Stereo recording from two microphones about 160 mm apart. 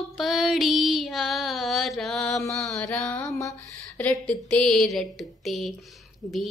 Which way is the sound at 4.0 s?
10° left (ahead or behind).